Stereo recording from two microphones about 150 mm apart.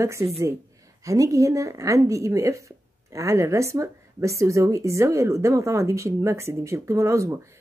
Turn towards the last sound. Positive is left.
turn(degrees=-20)  # may be behind; listen again after turning